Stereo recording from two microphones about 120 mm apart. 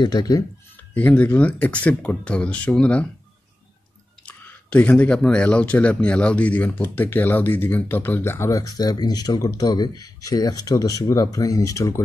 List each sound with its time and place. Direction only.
0.0 s speech: 35° left (ahead or behind)
0.7 s speech: 15° left (ahead or behind)
4.3 s speech: 10° left (ahead or behind); by 12.0 s 25° left (ahead or behind)